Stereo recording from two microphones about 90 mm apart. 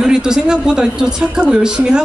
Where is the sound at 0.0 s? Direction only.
5° right (ahead or behind).